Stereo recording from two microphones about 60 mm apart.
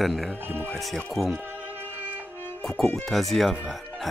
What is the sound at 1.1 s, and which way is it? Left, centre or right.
Speech, centre.